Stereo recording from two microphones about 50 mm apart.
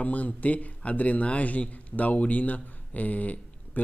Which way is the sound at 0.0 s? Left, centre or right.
Left.